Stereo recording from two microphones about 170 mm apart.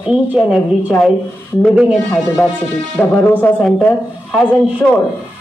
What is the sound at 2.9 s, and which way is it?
Speech, 10° left (ahead or behind).